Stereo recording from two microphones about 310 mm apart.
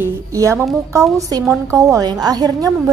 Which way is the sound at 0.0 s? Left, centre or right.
Centre.